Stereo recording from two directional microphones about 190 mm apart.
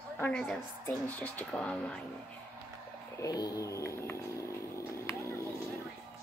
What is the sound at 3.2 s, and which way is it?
Speech, 20° left (ahead or behind).